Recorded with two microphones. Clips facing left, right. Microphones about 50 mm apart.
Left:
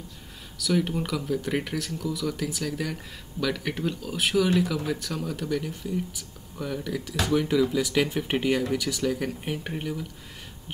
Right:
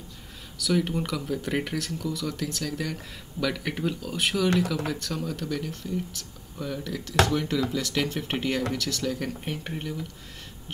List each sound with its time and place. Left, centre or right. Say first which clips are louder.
0.6 s speech: even; centre